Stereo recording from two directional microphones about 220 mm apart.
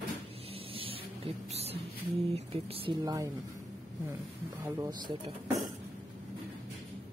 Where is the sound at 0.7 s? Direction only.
25° right (ahead or behind).